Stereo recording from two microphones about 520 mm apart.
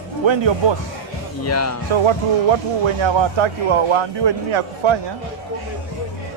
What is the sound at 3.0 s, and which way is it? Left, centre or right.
A man's voice, right.